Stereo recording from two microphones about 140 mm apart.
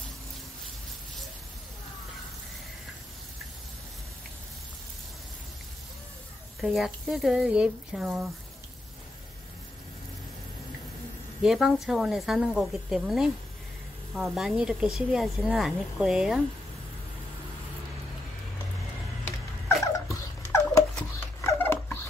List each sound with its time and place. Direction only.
6.6 s speech: centre (ahead or behind)
11.4 s speech: centre (ahead or behind)
19.8 s a sound: 20° left (ahead or behind)